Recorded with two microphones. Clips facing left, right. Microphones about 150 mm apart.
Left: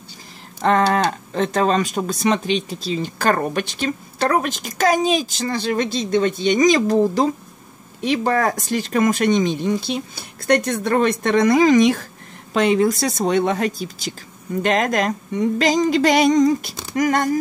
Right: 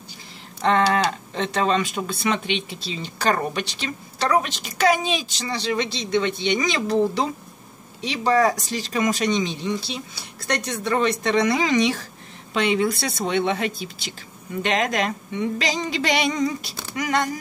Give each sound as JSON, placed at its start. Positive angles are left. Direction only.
{"t": 0.6, "sound": "speech", "side_deg": 40}